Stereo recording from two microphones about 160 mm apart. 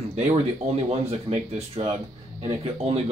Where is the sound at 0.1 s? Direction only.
40° right (ahead or behind).